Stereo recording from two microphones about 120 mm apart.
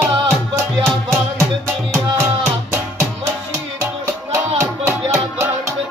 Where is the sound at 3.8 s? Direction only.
20° right (ahead or behind).